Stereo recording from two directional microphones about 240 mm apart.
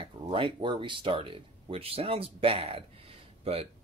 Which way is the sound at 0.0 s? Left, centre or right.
Centre.